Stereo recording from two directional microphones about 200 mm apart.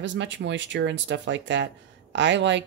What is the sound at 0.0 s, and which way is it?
Speech, 65° right (ahead or behind).